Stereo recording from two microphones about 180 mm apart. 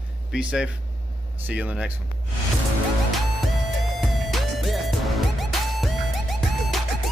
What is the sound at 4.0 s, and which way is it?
Music, centre (ahead or behind).